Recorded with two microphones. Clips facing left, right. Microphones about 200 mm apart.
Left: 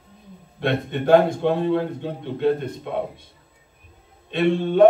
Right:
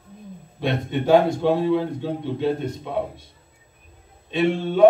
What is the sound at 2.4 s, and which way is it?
Speech, 55° left (ahead or behind).